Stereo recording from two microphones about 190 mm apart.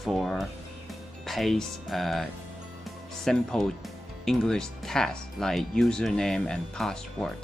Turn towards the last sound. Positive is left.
turn(degrees=5)  # may be behind; listen again after turning